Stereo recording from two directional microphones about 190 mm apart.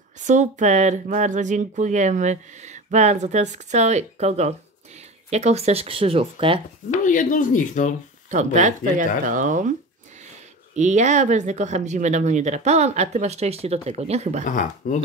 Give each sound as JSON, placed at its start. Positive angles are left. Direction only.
{"t": 0.2, "sound": "speech", "side_deg": -40}
{"t": 6.9, "sound": "speech", "side_deg": 45}
{"t": 8.3, "sound": "speech", "side_deg": -40}
{"t": 10.7, "sound": "speech", "side_deg": -40}
{"t": 14.5, "sound": "speech", "side_deg": 40}